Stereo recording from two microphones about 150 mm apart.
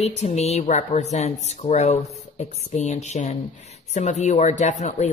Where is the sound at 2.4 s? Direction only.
50° left (ahead or behind).